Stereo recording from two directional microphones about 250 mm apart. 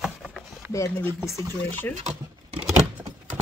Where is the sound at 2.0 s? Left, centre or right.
Right.